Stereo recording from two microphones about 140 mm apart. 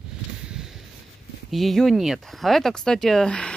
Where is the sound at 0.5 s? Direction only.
5° right (ahead or behind).